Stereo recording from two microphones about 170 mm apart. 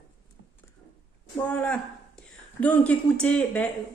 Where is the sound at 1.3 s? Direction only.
5° left (ahead or behind).